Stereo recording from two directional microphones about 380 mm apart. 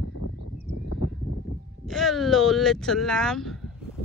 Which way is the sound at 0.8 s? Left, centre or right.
Left.